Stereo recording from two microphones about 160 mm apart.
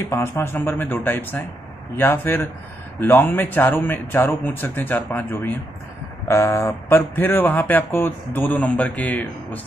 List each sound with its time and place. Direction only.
0.0 s speech: 15° left (ahead or behind)